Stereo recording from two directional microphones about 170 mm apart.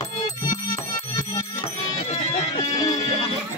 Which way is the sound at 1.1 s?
20° left (ahead or behind).